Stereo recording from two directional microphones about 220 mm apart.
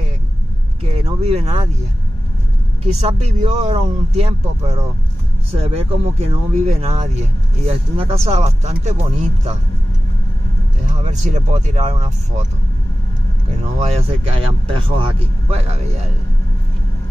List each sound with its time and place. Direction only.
0.8 s speech: 30° right (ahead or behind)
2.9 s speech: 30° right (ahead or behind)
10.9 s speech: 30° right (ahead or behind)
14.0 s speech: 25° right (ahead or behind)